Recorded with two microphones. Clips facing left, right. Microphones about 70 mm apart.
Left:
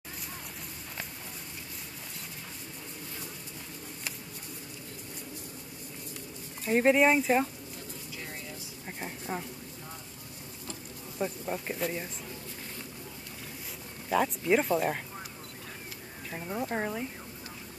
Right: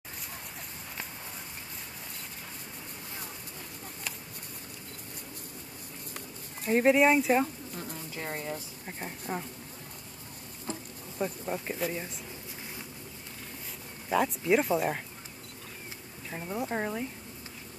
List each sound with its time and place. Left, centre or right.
6.6 s speech: centre
8.2 s a sound: right
8.8 s a sound: centre
11.1 s speech: centre
14.0 s speech: centre
16.3 s speech: centre